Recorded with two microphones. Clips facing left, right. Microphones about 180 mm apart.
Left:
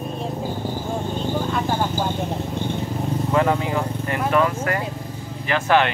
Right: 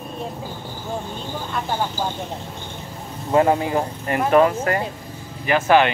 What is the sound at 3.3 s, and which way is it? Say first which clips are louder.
Speech: right 4 dB; 30° right (ahead or behind).